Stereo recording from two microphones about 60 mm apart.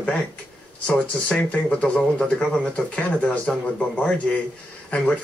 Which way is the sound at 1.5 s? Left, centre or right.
Left.